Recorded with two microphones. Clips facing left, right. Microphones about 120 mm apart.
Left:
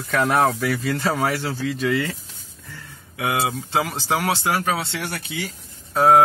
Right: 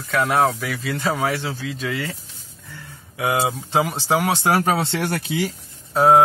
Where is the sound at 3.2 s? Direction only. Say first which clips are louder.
Right 2 dB; 25° right (ahead or behind).